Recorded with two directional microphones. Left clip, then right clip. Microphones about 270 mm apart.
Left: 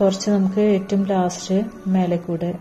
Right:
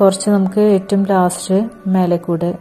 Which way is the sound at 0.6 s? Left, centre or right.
Right.